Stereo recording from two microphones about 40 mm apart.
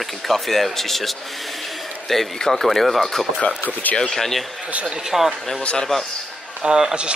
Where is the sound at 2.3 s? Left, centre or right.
Centre.